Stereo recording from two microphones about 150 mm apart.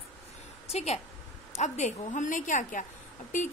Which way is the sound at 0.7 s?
45° left (ahead or behind).